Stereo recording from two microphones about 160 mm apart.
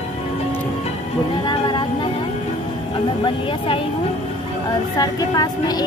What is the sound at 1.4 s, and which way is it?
Music, 30° left (ahead or behind).